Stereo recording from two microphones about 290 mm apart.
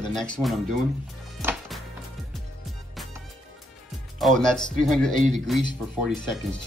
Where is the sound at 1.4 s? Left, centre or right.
Centre.